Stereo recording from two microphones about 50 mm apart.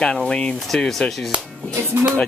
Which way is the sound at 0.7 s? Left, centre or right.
Centre.